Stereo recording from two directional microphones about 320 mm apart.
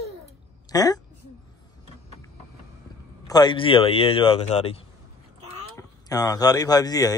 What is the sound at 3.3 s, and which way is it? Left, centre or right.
A man's voice, centre.